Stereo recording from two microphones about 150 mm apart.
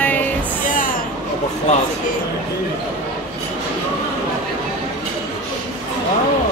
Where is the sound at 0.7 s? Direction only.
65° left (ahead or behind).